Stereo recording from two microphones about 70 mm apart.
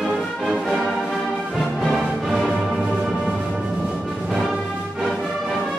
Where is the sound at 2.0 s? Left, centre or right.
Centre.